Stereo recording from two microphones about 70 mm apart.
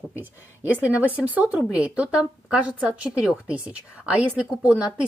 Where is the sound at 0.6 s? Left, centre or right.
Right.